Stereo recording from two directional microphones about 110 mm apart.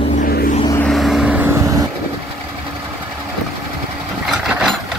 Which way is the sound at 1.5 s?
30° right (ahead or behind).